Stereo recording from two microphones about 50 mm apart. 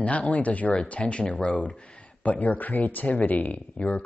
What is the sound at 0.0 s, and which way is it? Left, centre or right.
Speech, left.